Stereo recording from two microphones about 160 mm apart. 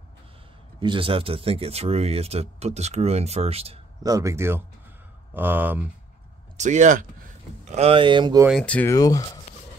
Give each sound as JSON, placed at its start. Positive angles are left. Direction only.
{"t": 0.7, "sound": "speech", "side_deg": -30}
{"t": 4.0, "sound": "speech", "side_deg": -20}
{"t": 6.5, "sound": "speech", "side_deg": -50}
{"t": 7.6, "sound": "speech", "side_deg": -40}
{"t": 8.5, "sound": "speech", "side_deg": 5}
{"t": 8.9, "sound": "speech", "side_deg": 20}